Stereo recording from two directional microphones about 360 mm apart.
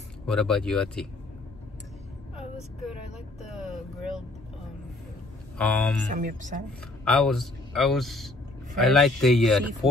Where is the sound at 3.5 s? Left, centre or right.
Centre.